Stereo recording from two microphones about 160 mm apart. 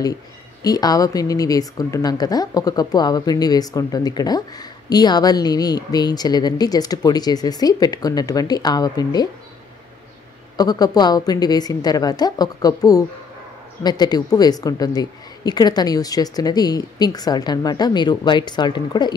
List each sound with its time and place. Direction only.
0.0 s speech: 20° left (ahead or behind)
10.6 s speech: 25° left (ahead or behind)